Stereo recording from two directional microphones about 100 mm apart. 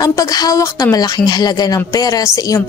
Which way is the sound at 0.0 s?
40° left (ahead or behind).